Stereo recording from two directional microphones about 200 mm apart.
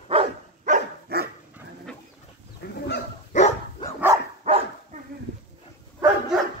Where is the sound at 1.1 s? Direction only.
50° right (ahead or behind).